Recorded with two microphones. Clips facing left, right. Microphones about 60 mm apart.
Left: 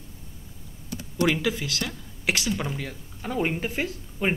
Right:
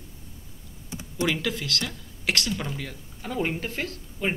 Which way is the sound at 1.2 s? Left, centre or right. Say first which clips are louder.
Left 3 dB; centre.